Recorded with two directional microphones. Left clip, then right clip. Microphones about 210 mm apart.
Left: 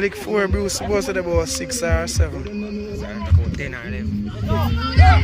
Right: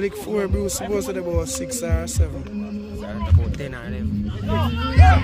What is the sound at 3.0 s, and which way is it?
Speech, 20° right (ahead or behind).